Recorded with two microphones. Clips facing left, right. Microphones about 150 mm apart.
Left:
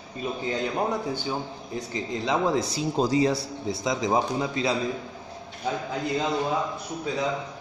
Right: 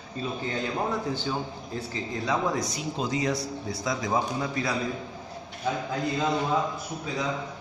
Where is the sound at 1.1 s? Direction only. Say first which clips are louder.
Even; 15° left (ahead or behind).